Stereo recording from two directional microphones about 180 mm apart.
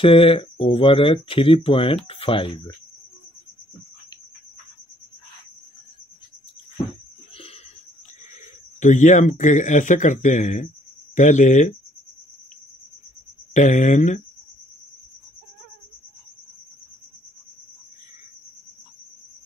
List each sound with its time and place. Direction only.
0.0 s speech: 30° left (ahead or behind)
8.7 s speech: 45° left (ahead or behind)
13.5 s speech: 40° left (ahead or behind)